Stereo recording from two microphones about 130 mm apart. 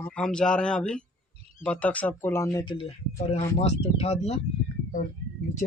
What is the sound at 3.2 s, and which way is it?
Speech, 55° left (ahead or behind).